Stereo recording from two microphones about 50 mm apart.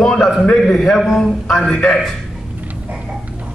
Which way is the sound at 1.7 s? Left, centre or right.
Left.